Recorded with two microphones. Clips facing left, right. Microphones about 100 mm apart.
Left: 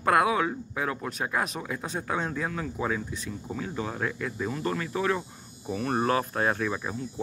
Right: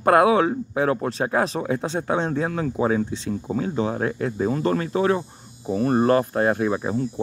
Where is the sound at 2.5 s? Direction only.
40° right (ahead or behind).